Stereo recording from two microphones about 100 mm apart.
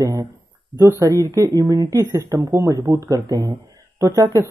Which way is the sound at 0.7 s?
30° right (ahead or behind).